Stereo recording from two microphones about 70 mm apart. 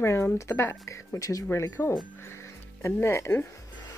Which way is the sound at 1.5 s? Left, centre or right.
Left.